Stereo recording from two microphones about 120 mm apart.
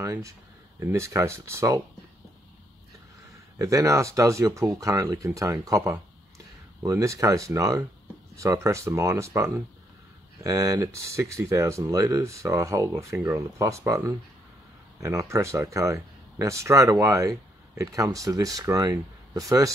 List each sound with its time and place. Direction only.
0.0 s speech: 25° right (ahead or behind)
3.5 s speech: 25° right (ahead or behind)